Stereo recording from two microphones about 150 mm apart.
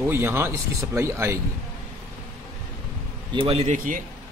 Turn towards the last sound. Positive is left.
turn(degrees=-55)  # may be behind; listen again after turning